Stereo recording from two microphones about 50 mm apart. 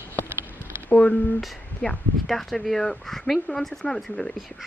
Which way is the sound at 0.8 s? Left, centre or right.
Left.